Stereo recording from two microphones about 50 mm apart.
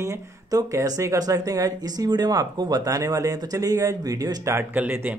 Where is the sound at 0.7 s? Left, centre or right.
Right.